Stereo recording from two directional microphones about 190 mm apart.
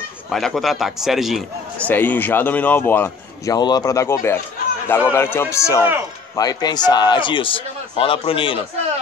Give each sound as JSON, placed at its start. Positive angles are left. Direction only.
{"t": 0.3, "sound": "a man's voice", "side_deg": 0}
{"t": 1.9, "sound": "a man's voice", "side_deg": 10}